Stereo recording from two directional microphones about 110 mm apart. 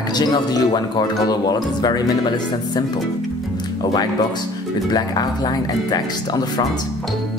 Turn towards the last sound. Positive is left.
turn(degrees=35)  # may be behind; listen again after turning